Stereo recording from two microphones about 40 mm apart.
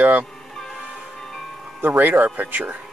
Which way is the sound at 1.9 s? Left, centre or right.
Right.